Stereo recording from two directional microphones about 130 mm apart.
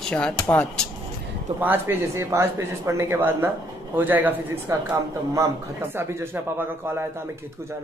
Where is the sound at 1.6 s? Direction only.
15° right (ahead or behind).